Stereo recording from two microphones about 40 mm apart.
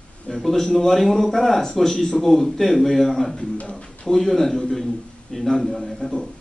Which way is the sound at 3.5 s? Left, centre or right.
Left.